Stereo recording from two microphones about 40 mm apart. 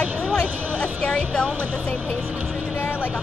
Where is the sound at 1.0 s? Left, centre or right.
Centre.